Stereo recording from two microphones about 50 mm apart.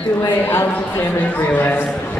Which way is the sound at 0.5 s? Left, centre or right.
Left.